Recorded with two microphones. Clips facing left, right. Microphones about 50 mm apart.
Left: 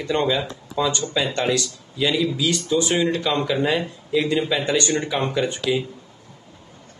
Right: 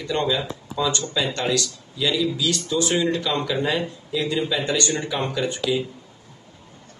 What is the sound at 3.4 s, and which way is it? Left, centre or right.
Speech, centre.